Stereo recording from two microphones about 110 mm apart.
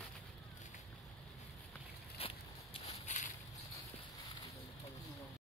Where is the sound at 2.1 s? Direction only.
60° left (ahead or behind); by 3.3 s 90° left.